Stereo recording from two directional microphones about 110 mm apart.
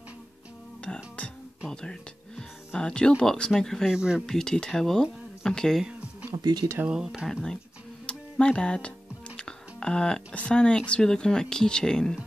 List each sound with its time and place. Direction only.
0.8 s music: 10° left (ahead or behind)
1.7 s speech: 5° left (ahead or behind)
3.9 s speech: 5° right (ahead or behind)
4.3 s speech: 5° left (ahead or behind)
6.3 s speech: 40° right (ahead or behind)
6.9 s speech: 5° right (ahead or behind)
8.1 s speech: 10° left (ahead or behind)